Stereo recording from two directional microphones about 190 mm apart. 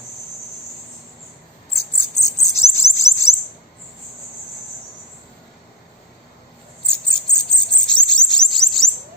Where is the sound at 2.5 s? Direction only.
15° left (ahead or behind).